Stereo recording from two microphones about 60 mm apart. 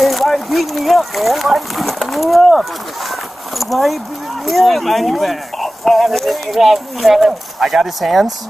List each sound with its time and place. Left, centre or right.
0.0 s speech: centre
3.1 s a sound: centre
4.5 s speech: centre